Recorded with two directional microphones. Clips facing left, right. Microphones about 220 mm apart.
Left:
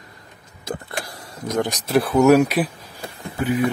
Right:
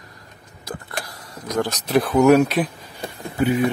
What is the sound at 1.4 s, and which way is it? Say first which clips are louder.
Speech: left 1 dB; 20° left (ahead or behind).